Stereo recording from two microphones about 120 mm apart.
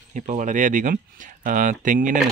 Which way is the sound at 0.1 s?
90° right.